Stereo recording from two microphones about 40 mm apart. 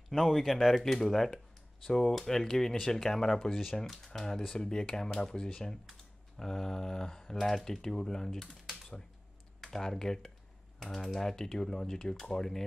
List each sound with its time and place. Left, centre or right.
0.1 s speech: centre
9.6 s speech: centre